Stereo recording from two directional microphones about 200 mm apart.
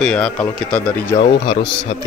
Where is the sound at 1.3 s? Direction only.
25° left (ahead or behind).